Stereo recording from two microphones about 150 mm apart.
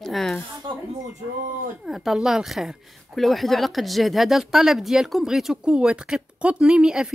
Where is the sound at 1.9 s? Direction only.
Centre (ahead or behind).